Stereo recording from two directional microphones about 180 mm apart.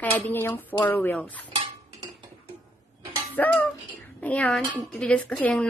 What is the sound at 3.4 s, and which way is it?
A woman's voice, 10° left (ahead or behind).